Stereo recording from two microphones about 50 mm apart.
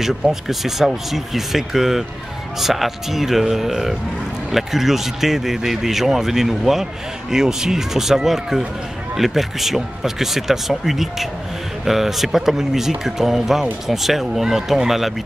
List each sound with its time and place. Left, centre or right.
0.0 s speech: centre